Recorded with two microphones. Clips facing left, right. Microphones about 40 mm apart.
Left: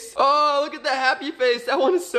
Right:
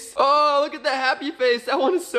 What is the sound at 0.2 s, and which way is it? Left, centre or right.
Speech, centre.